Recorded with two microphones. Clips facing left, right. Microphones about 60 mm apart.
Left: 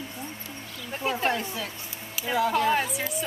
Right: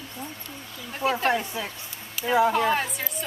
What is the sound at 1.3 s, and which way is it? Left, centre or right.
Speech, centre.